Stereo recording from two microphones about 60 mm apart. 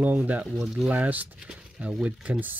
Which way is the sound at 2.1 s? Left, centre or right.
Right.